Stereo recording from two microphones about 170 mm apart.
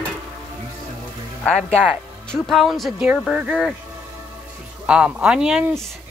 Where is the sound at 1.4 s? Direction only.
10° left (ahead or behind).